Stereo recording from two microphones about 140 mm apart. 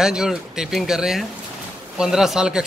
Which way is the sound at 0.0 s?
5° right (ahead or behind).